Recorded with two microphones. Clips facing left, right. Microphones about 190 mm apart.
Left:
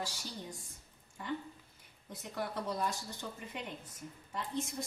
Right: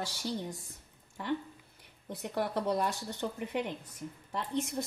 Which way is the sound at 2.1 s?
65° right (ahead or behind).